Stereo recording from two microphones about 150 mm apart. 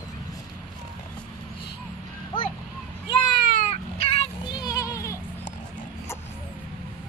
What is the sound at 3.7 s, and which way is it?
Child singing, 40° left (ahead or behind).